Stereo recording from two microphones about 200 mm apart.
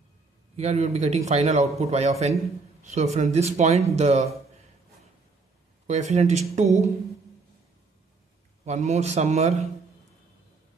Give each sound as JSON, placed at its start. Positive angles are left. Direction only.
{"t": 0.6, "sound": "a man's voice", "side_deg": -35}
{"t": 5.9, "sound": "a man's voice", "side_deg": -35}
{"t": 8.6, "sound": "a man's voice", "side_deg": -35}